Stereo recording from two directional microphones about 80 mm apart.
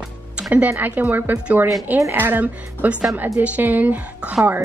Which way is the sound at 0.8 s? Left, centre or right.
Right.